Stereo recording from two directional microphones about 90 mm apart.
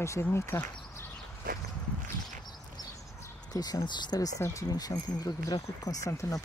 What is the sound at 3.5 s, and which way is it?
Speech, 45° left (ahead or behind).